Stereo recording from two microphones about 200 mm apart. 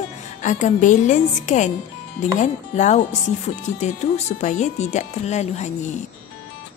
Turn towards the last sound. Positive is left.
turn(degrees=35)  # may be behind; listen again after turning